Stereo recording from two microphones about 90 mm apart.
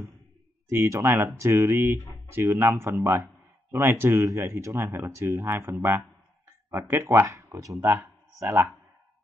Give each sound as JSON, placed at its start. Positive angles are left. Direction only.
{"t": 0.7, "sound": "speech", "side_deg": -30}